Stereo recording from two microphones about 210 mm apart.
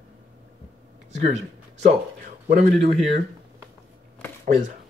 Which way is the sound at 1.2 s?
30° right (ahead or behind).